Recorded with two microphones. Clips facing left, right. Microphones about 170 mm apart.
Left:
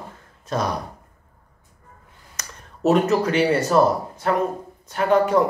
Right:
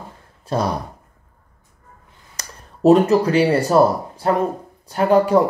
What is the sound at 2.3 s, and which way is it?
Speech, 30° right (ahead or behind).